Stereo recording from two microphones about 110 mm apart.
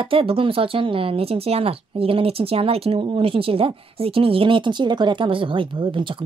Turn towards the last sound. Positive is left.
turn(degrees=-50)  # may be behind; listen again after turning